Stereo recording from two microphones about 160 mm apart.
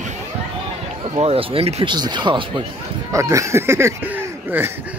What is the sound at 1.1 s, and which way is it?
Speech, 35° right (ahead or behind).